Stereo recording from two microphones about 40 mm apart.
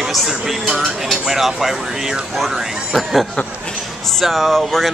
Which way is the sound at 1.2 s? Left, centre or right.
Centre.